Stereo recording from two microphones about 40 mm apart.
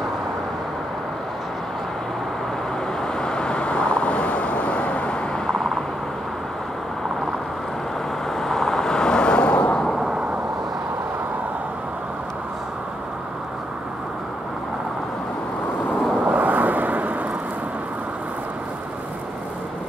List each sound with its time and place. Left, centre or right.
3.0 s vehicle: centre
8.4 s vehicle: centre; by 9.8 s left
16.3 s waves: right